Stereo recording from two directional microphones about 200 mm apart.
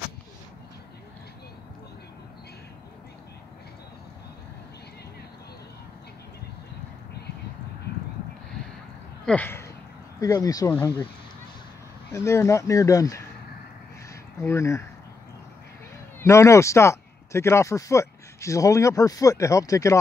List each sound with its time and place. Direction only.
9.2 s a sound: 5° left (ahead or behind)
10.2 s speech: 15° left (ahead or behind)
12.1 s speech: 15° left (ahead or behind)
14.4 s speech: 15° left (ahead or behind)
16.2 s speech: 15° left (ahead or behind)